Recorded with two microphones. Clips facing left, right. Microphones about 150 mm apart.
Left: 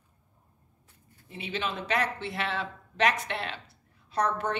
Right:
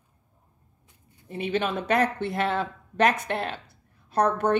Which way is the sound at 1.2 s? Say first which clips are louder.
Right 7 dB; 50° right (ahead or behind).